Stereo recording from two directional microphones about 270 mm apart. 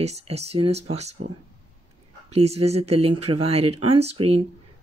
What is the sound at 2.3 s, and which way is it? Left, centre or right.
Speech, right.